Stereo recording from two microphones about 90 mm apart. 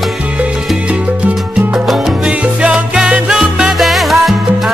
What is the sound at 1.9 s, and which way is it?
Salsa music, 10° right (ahead or behind).